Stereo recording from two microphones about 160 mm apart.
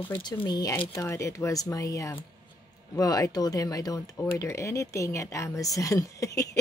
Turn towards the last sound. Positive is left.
turn(degrees=20)  # may be behind; listen again after turning